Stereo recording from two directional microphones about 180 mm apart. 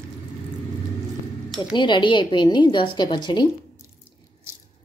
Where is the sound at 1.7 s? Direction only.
25° left (ahead or behind).